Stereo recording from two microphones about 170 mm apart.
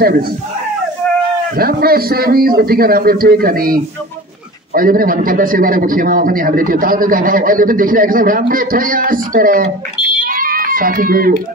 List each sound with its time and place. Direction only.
0.0 s a man's voice: 60° right (ahead or behind)
1.6 s a man's voice: 60° right (ahead or behind)
4.7 s a man's voice: 55° right (ahead or behind)
10.2 s cat: 55° right (ahead or behind)